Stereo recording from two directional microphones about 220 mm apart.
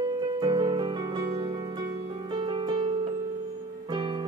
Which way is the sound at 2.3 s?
20° right (ahead or behind).